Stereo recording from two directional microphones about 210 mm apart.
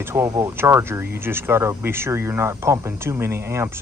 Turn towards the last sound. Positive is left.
turn(degrees=-10)  # may be behind; listen again after turning